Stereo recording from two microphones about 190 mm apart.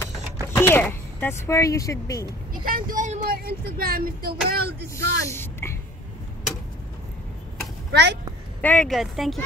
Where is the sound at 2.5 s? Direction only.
50° right (ahead or behind).